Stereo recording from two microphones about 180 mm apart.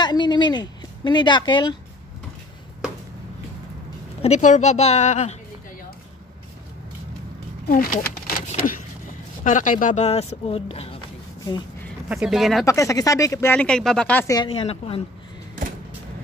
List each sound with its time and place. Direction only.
0.0 s speech: 25° left (ahead or behind)
4.2 s speech: 40° left (ahead or behind)
7.6 s a sound: 55° left (ahead or behind)
9.4 s speech: 45° left (ahead or behind)
12.1 s speech: 5° right (ahead or behind)
12.6 s speech: 20° left (ahead or behind)
14.3 s speech: 25° left (ahead or behind)